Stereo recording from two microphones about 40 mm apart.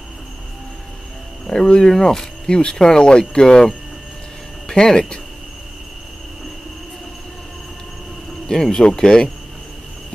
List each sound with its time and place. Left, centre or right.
1.5 s speech: left
4.6 s speech: centre
8.5 s speech: centre